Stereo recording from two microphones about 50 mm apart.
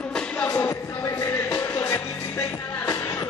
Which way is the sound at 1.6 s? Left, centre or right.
Left.